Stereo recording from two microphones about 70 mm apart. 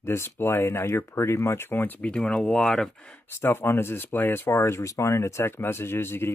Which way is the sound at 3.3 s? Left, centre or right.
Left.